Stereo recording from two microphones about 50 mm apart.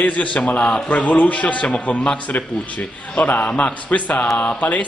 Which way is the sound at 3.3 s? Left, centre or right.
Left.